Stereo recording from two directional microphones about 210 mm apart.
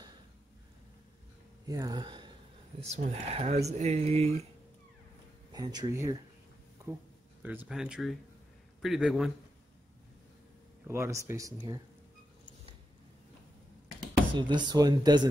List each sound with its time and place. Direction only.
1.7 s speech: 15° right (ahead or behind)
2.9 s speech: 30° right (ahead or behind)
5.5 s speech: 20° right (ahead or behind)
6.8 s a sound: 15° right (ahead or behind)
7.4 s speech: 5° right (ahead or behind)
10.9 s speech: 15° right (ahead or behind)
14.3 s speech: 20° right (ahead or behind)